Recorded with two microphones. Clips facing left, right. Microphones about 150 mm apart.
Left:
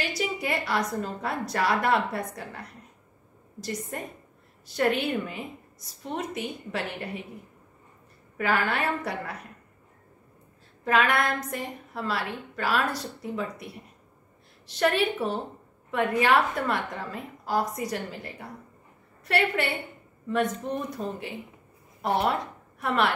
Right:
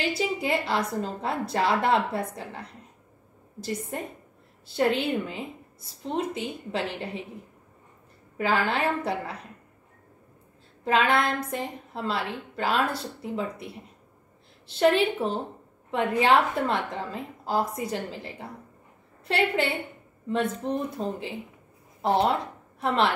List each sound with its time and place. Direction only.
0.0 s a woman's voice: 25° right (ahead or behind)
4.6 s a woman's voice: 25° right (ahead or behind)
8.4 s a woman's voice: 25° right (ahead or behind)
10.8 s a woman's voice: 25° right (ahead or behind)
14.7 s a woman's voice: 25° right (ahead or behind)